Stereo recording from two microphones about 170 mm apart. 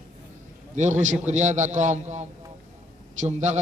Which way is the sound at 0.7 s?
45° right (ahead or behind).